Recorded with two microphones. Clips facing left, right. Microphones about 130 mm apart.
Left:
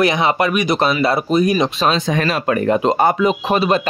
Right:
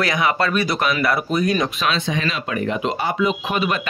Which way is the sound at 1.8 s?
45° left (ahead or behind).